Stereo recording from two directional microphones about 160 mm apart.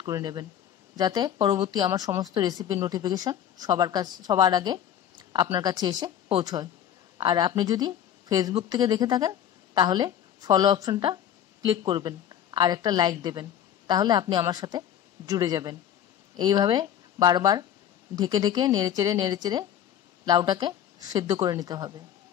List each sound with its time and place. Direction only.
0.0 s a woman's voice: 25° right (ahead or behind)